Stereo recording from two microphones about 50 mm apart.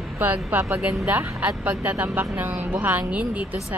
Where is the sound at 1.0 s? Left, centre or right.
Right.